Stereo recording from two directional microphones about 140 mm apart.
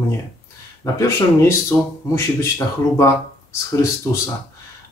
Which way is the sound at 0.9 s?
20° left (ahead or behind).